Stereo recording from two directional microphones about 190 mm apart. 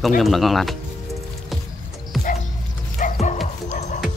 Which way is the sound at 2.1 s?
Centre (ahead or behind).